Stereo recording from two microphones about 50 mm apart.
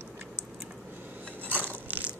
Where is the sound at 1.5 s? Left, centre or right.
Right.